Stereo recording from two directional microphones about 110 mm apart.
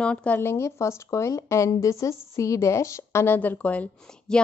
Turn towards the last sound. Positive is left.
turn(degrees=10)  # may be behind; listen again after turning